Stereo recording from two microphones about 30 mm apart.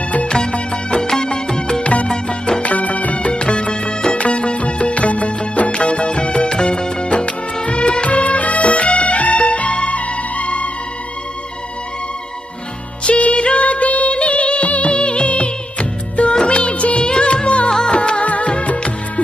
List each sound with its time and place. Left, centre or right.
0.3 s music: left
1.0 s music: left
1.8 s music: left
2.0 s music: left
2.6 s music: left
3.3 s music: left
5.7 s music: left
13.0 s music: left
14.1 s music: left
17.0 s music: left
18.2 s music of bollywood: left